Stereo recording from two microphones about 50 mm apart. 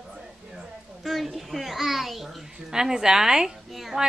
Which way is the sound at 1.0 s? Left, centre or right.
Centre.